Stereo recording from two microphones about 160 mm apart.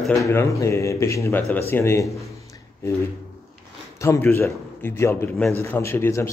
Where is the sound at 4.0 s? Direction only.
15° left (ahead or behind).